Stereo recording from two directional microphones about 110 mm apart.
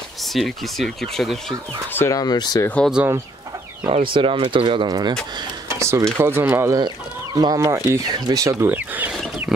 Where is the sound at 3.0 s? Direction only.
15° right (ahead or behind).